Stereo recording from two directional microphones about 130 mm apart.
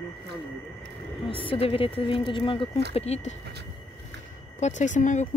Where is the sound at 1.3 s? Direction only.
45° left (ahead or behind).